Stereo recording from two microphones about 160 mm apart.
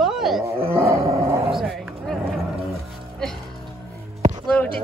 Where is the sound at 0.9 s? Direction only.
20° right (ahead or behind).